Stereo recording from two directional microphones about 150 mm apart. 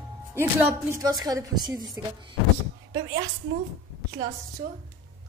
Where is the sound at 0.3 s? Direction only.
15° right (ahead or behind).